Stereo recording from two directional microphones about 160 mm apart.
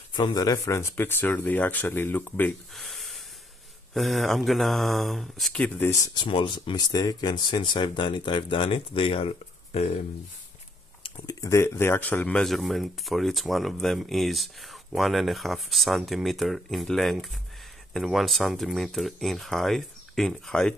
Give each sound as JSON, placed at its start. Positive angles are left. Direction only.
{"t": 0.1, "sound": "speech", "side_deg": 25}
{"t": 6.0, "sound": "speech", "side_deg": 30}
{"t": 11.0, "sound": "a sound", "side_deg": 35}
{"t": 11.4, "sound": "speech", "side_deg": 20}